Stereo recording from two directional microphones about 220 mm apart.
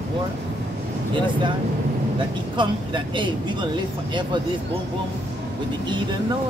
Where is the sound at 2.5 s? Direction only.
20° right (ahead or behind).